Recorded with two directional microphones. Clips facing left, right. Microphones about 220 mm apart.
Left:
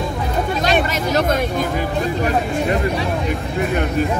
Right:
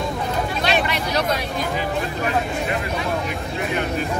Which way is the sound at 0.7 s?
45° left (ahead or behind).